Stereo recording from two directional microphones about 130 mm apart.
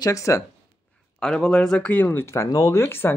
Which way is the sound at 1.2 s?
5° left (ahead or behind).